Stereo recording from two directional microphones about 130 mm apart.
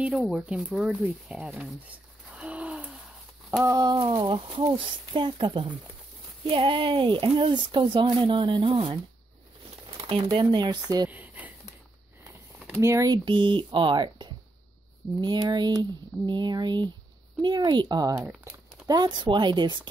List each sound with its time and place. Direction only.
0.0 s speech: 5° right (ahead or behind)
2.3 s a sound: 10° right (ahead or behind)
3.6 s speech: 30° right (ahead or behind); by 9.0 s 45° right (ahead or behind)
10.2 s speech: 35° right (ahead or behind)
11.1 s a sound: 10° right (ahead or behind)
12.8 s speech: 25° right (ahead or behind)
13.2 s speech: 40° right (ahead or behind)